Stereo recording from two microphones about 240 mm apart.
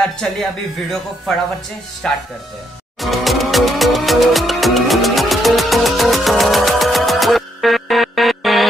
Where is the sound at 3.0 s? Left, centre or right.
Centre.